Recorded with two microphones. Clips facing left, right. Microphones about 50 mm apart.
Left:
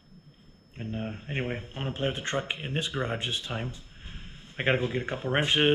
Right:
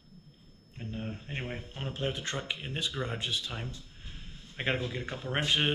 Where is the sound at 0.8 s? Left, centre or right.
Left.